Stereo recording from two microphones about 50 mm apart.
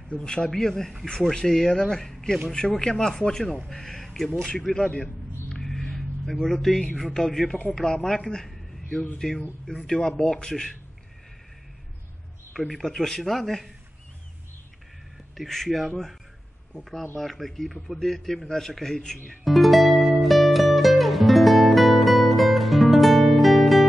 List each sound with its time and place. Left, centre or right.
0.1 s speech: centre
4.8 s a man's voice: left
5.6 s a sound: centre
7.0 s speech: centre
9.7 s speech: centre
12.5 s speech: centre
15.3 s speech: centre
17.2 s speech: centre
19.4 s music: centre